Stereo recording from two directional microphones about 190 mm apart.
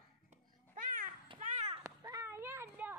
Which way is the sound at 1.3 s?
40° right (ahead or behind).